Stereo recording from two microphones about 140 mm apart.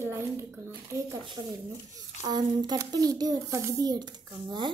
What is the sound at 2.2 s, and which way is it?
A woman's voice, 30° right (ahead or behind).